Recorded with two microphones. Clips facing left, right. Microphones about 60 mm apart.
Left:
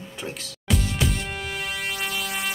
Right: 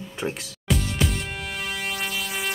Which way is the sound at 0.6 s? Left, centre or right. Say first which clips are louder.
Even; centre.